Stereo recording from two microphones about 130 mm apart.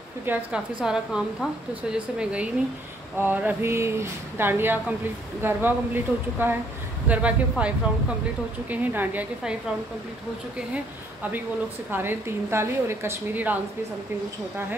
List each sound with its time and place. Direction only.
0.2 s a woman's voice: 15° right (ahead or behind)
11.9 s speech: 15° right (ahead or behind)